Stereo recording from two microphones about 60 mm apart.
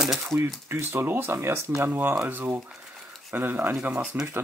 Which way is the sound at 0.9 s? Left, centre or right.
Right.